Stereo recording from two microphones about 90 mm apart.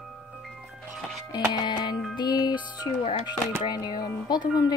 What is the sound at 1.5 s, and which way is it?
Music, 55° left (ahead or behind).